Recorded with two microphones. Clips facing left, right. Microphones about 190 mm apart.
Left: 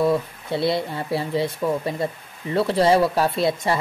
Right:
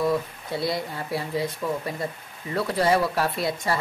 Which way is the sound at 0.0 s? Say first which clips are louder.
Left 4 dB; 25° left (ahead or behind).